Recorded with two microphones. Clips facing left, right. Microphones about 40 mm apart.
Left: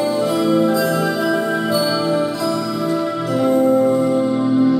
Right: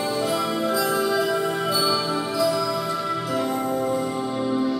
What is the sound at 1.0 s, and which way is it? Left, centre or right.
Music, left.